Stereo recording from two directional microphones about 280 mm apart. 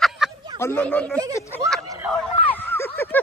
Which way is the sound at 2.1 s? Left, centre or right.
Centre.